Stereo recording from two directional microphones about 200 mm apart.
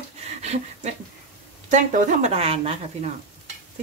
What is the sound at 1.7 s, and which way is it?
A woman's voice, 35° right (ahead or behind).